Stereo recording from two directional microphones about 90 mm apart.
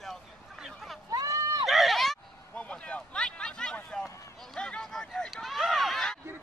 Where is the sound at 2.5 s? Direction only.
15° left (ahead or behind).